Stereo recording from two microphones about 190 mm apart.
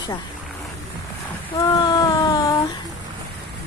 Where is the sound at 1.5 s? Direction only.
20° left (ahead or behind).